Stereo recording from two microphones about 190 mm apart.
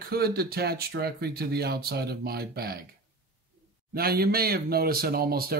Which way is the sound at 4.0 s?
55° right (ahead or behind).